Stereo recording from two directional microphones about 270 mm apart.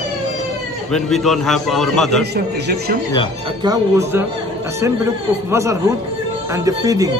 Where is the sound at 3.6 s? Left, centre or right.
Centre.